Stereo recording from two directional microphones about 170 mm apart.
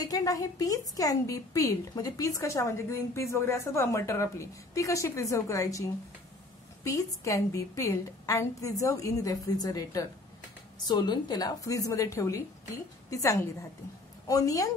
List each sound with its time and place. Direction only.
0.0 s a woman's voice: 20° left (ahead or behind)